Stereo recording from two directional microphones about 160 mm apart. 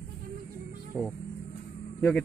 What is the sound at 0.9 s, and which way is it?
Speech, 10° left (ahead or behind).